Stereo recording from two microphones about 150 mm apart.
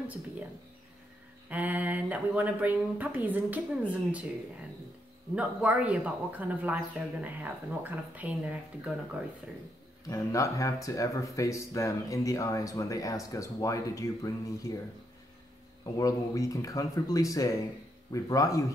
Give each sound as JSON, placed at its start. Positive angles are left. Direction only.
{"t": 1.5, "sound": "speech", "side_deg": -10}
{"t": 5.3, "sound": "speech", "side_deg": -10}
{"t": 10.0, "sound": "speech", "side_deg": 20}
{"t": 15.8, "sound": "speech", "side_deg": 20}